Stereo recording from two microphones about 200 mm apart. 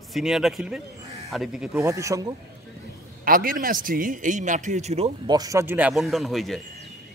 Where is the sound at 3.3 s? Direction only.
45° right (ahead or behind).